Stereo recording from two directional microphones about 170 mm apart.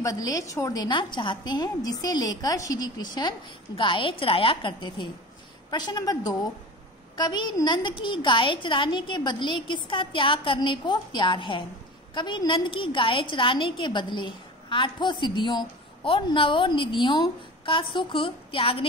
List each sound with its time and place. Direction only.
0.0 s a woman's voice: 20° left (ahead or behind)